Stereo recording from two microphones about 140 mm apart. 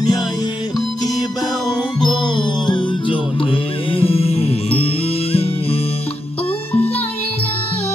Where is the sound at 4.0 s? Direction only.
45° left (ahead or behind).